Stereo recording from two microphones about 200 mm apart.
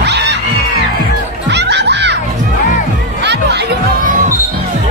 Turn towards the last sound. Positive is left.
turn(degrees=-55)  # may be behind; listen again after turning